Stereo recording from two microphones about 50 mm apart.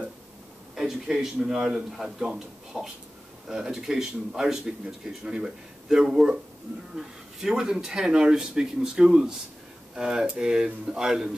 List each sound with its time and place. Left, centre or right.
0.7 s speech: centre